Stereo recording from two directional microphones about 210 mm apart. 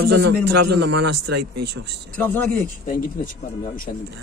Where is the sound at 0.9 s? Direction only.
50° right (ahead or behind).